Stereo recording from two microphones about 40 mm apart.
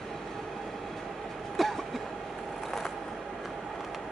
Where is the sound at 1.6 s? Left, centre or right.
Centre.